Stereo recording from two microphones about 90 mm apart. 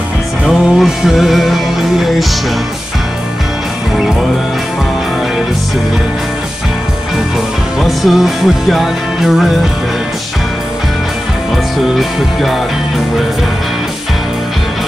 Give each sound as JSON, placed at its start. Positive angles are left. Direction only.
{"t": 0.5, "sound": "music", "side_deg": 0}
{"t": 7.8, "sound": "music", "side_deg": 0}
{"t": 11.5, "sound": "music", "side_deg": 0}